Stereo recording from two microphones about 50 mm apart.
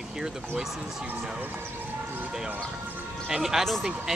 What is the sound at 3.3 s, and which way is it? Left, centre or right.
Speech, centre.